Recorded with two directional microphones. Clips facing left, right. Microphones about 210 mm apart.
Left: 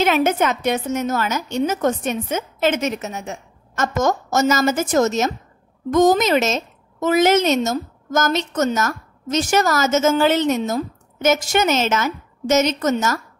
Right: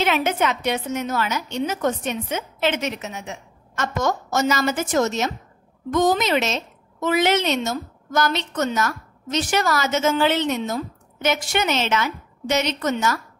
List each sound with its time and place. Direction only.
0.0 s a woman's voice: 45° left (ahead or behind)